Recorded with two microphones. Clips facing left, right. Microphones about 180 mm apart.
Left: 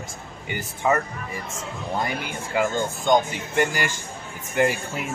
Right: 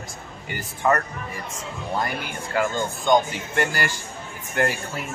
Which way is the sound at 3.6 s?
20° left (ahead or behind).